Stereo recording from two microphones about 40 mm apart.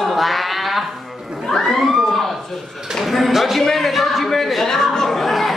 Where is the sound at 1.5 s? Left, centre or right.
Centre.